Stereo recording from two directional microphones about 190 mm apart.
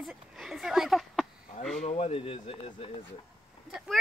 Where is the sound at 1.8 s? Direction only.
30° left (ahead or behind).